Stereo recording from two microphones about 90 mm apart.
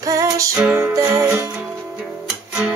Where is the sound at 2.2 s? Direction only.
10° right (ahead or behind).